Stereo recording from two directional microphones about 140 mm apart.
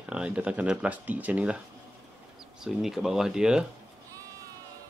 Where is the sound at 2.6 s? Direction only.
Centre (ahead or behind).